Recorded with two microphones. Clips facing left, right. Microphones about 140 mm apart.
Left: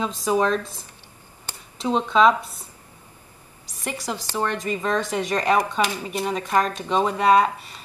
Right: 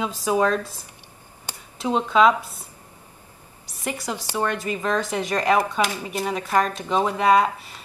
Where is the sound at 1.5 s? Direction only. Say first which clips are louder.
Even; 10° right (ahead or behind).